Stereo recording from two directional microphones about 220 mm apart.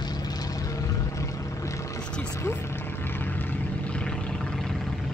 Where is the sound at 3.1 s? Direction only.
10° left (ahead or behind).